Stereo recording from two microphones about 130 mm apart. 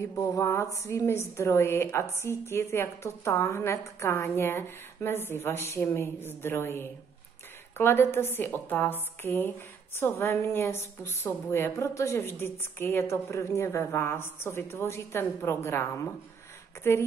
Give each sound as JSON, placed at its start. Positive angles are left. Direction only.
{"t": 0.1, "sound": "a woman's voice", "side_deg": 25}